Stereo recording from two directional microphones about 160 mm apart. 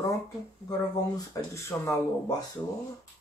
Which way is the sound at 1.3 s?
15° left (ahead or behind).